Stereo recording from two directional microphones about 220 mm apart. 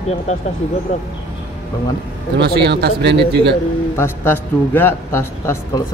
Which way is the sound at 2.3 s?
50° right (ahead or behind).